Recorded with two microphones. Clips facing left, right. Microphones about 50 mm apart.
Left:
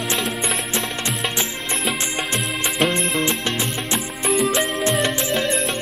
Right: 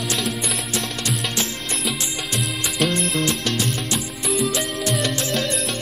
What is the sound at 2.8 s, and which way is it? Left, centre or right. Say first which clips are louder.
Music: left 1 dB; left.